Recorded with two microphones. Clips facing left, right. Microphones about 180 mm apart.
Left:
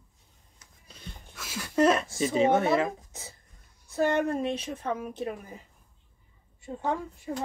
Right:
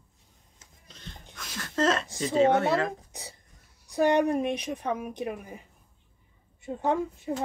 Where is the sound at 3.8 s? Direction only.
15° right (ahead or behind).